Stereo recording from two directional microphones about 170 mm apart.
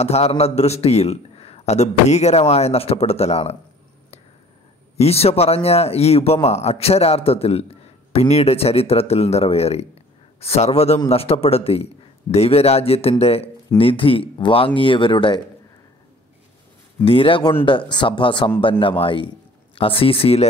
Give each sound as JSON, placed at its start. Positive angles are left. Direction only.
{"t": 0.0, "sound": "speech", "side_deg": 40}
{"t": 4.9, "sound": "speech", "side_deg": 35}
{"t": 17.0, "sound": "a man's voice", "side_deg": 35}